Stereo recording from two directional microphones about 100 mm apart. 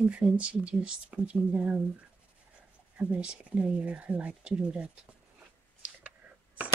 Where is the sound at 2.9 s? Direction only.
10° right (ahead or behind).